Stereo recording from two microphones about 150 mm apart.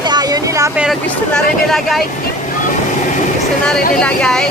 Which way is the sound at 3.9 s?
5° left (ahead or behind).